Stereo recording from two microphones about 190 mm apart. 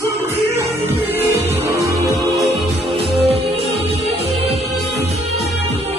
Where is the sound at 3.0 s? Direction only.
30° right (ahead or behind).